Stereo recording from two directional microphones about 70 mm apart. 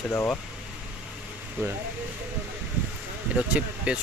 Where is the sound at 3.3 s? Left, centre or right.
Centre.